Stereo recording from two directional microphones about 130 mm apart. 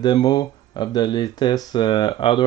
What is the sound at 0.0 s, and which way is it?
Speech, 35° left (ahead or behind).